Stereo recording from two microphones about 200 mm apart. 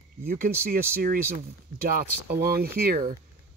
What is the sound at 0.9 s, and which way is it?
Speech, 45° right (ahead or behind).